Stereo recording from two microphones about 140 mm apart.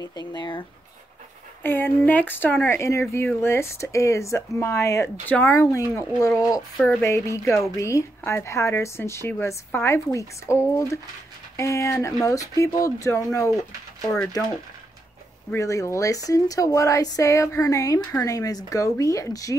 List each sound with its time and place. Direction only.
0.0 s speech: 25° left (ahead or behind)
1.6 s speech: 15° left (ahead or behind)
15.5 s speech: 20° left (ahead or behind)